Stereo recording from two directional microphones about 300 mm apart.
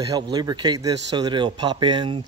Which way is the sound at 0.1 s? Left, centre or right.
Centre.